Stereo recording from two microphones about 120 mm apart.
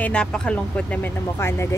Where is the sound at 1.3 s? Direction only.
20° left (ahead or behind).